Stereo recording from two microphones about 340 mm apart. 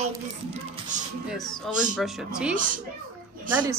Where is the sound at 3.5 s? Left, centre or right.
Centre.